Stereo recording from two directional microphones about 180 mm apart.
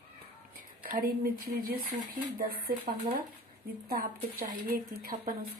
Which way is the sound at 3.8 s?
55° right (ahead or behind).